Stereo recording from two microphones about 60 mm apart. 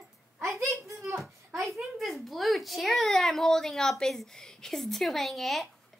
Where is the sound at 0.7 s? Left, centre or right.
Right.